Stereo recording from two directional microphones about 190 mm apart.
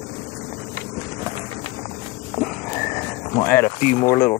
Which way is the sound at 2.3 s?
40° left (ahead or behind).